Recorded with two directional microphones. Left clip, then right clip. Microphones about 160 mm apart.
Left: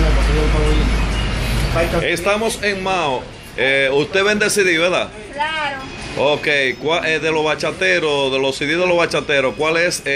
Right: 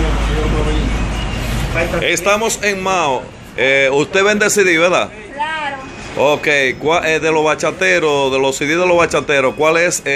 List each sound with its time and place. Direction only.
2.0 s speech: 10° right (ahead or behind); by 5.0 s 25° right (ahead or behind)
6.1 s speech: 20° right (ahead or behind)